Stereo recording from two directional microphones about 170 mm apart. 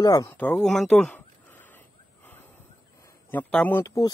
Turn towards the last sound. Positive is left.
turn(degrees=15)  # may be behind; listen again after turning